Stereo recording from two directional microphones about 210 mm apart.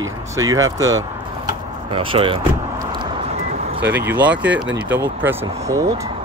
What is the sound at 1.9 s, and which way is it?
Vehicle, 25° right (ahead or behind).